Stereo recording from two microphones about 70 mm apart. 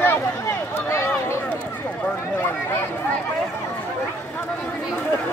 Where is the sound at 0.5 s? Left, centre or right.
Left.